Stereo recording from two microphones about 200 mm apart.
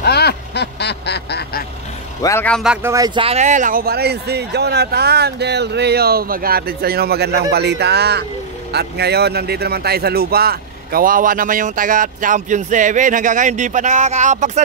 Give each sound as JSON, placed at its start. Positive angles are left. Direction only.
{"t": 0.0, "sound": "duck", "side_deg": 55}
{"t": 2.2, "sound": "speech", "side_deg": 10}
{"t": 2.6, "sound": "speech", "side_deg": -10}
{"t": 3.2, "sound": "a man's voice", "side_deg": -30}